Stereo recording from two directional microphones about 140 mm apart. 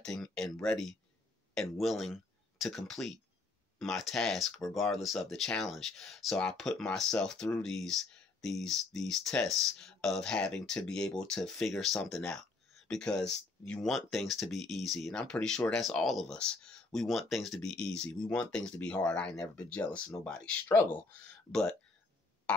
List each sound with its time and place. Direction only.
0.0 s speech: 5° left (ahead or behind)